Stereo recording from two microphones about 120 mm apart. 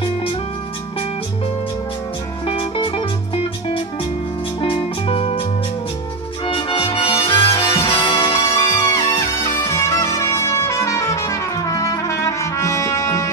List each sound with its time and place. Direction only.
2.4 s music: 45° left (ahead or behind)
4.6 s music: 50° left (ahead or behind)
6.4 s music: 50° left (ahead or behind)
9.2 s music: 30° left (ahead or behind)